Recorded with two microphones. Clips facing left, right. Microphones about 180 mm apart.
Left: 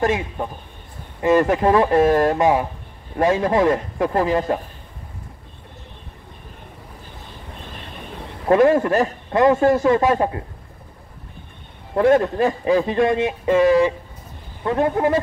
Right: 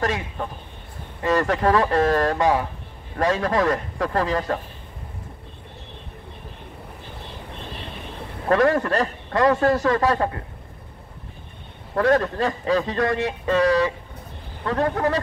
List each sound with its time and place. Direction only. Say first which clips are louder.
0.0 s speech: left 5 dB; 20° left (ahead or behind)
8.5 s speech: left 4 dB; 25° left (ahead or behind)
11.9 s speech: left 4 dB; 20° left (ahead or behind)